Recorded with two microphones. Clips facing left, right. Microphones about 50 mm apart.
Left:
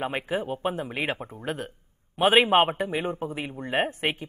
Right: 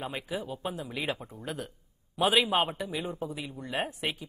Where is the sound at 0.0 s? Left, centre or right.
Left.